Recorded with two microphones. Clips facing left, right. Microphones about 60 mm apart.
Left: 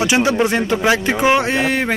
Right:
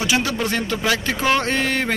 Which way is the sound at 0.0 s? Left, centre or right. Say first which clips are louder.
Left 6 dB; left.